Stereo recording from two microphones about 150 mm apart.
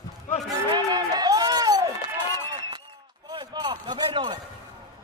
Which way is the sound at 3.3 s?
30° right (ahead or behind).